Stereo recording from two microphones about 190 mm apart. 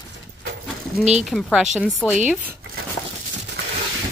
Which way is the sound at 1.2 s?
Centre (ahead or behind).